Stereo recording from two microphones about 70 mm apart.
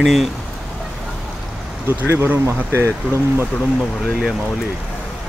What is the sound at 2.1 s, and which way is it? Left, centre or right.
Speech, right.